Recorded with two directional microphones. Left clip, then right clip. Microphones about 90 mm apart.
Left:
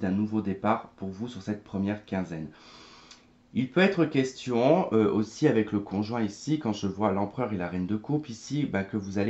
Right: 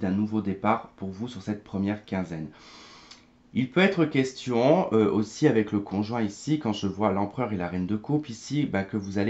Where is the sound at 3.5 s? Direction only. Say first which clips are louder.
Right 1 dB; 30° right (ahead or behind).